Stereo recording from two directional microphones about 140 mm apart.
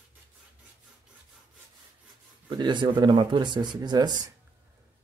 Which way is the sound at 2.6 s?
30° right (ahead or behind).